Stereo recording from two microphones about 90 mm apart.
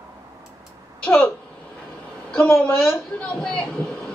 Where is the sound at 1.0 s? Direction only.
15° left (ahead or behind).